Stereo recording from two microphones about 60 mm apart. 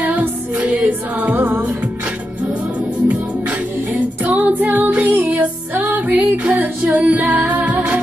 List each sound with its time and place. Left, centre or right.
0.0 s music: right
4.3 s music: right
6.6 s female singing: right